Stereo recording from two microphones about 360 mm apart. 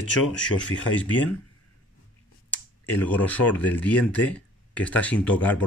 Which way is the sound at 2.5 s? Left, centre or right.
Centre.